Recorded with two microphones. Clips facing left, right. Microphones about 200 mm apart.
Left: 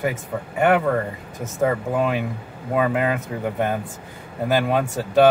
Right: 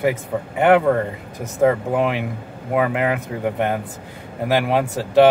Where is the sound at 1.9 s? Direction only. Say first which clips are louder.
Right 2 dB; 20° right (ahead or behind).